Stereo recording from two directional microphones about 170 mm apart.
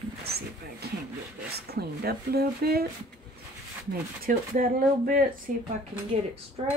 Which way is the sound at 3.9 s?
55° right (ahead or behind).